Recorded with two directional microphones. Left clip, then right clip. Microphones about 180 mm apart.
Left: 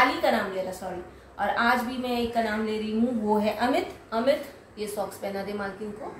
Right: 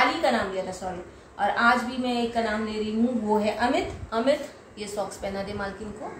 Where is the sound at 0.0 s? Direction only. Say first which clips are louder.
Even; 15° left (ahead or behind).